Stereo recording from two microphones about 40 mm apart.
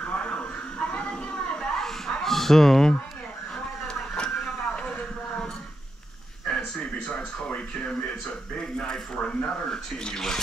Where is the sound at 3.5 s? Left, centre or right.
Left.